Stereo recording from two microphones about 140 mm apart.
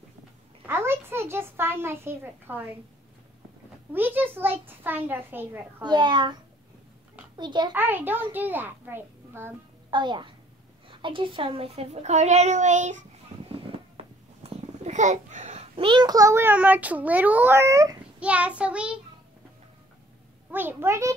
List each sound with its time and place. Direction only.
0.7 s a child's voice: 15° right (ahead or behind)
3.9 s a child's voice: 15° right (ahead or behind)
5.9 s a child's voice: 30° right (ahead or behind)
7.7 s a child's voice: 15° right (ahead or behind)
9.8 s a child's voice: 35° right (ahead or behind); by 13.0 s 60° right (ahead or behind)
14.4 s a child's voice: 50° right (ahead or behind); by 17.9 s 20° right (ahead or behind)
18.2 s a child's voice: 10° right (ahead or behind)
20.5 s a child's voice: 15° right (ahead or behind)